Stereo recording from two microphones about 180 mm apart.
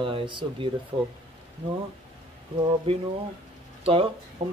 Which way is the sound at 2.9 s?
30° right (ahead or behind).